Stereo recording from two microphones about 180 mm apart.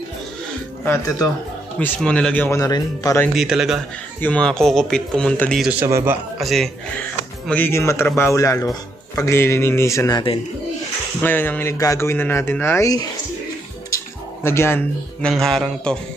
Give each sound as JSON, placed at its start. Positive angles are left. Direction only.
{"t": 0.8, "sound": "speech", "side_deg": 20}
{"t": 1.8, "sound": "speech", "side_deg": 5}
{"t": 3.3, "sound": "speech", "side_deg": -5}
{"t": 6.3, "sound": "speech", "side_deg": 0}
{"t": 11.2, "sound": "speech", "side_deg": 10}